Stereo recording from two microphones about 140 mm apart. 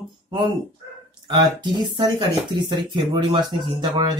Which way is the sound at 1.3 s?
30° right (ahead or behind).